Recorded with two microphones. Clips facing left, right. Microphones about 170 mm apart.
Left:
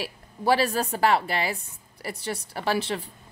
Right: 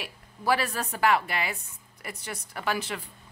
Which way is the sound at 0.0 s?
30° left (ahead or behind).